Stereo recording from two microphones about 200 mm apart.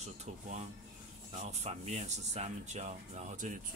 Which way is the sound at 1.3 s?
35° right (ahead or behind).